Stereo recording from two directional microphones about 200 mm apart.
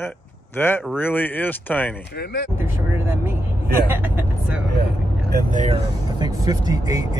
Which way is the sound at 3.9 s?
10° right (ahead or behind).